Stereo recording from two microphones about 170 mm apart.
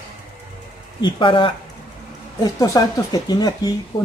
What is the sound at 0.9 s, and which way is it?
Speech, 25° left (ahead or behind).